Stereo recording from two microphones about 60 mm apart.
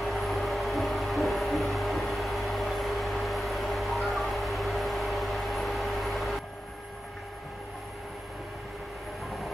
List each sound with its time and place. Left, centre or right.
0.0 s music: centre